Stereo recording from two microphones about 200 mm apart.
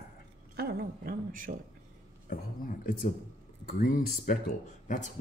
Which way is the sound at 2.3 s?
45° left (ahead or behind).